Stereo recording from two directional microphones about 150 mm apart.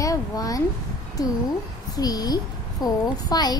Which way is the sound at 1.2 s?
25° left (ahead or behind).